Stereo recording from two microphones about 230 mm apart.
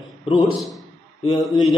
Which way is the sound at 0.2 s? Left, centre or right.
Left.